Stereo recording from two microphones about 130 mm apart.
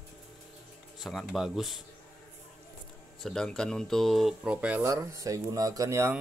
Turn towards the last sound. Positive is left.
turn(degrees=-20)  # may be behind; listen again after turning